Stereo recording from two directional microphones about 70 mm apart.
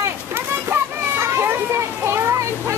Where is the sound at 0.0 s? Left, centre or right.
Right.